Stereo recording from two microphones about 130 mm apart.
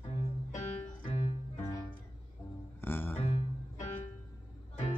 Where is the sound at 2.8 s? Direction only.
15° left (ahead or behind).